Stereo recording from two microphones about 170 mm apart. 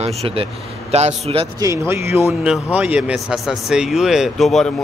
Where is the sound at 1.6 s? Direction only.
15° right (ahead or behind).